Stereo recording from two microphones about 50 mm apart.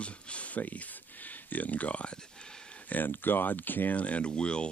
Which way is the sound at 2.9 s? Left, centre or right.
Left.